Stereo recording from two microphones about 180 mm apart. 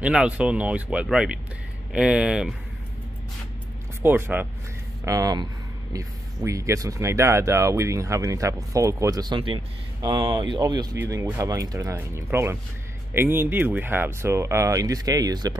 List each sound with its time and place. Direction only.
0.0 s speech: 5° right (ahead or behind)
4.0 s speech: 10° right (ahead or behind)